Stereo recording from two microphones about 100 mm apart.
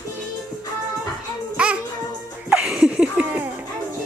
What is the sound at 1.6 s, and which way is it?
Music, 10° right (ahead or behind).